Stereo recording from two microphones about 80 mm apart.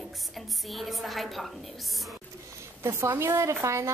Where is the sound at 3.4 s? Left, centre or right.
Right.